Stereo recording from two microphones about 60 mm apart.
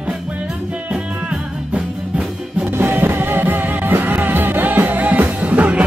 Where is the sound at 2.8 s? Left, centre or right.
Right.